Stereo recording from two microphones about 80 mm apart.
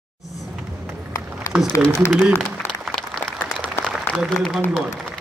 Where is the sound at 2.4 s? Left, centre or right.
Centre.